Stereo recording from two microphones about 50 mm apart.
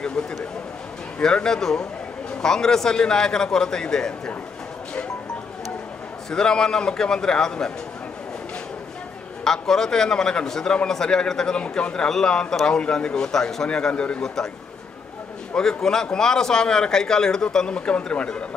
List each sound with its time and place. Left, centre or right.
1.2 s a man's voice: centre
6.3 s a man's voice: centre
9.4 s a man's voice: centre
14.2 s a man's voice: centre
15.5 s a man's voice: centre